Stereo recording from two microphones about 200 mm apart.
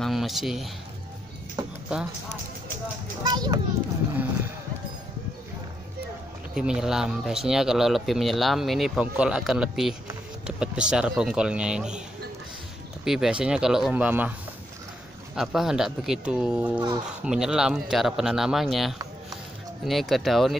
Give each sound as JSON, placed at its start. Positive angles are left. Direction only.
{"t": 0.0, "sound": "speech", "side_deg": 0}
{"t": 3.3, "sound": "a child's voice", "side_deg": -20}
{"t": 6.5, "sound": "speech", "side_deg": -5}
{"t": 13.0, "sound": "speech", "side_deg": 0}
{"t": 15.3, "sound": "speech", "side_deg": 0}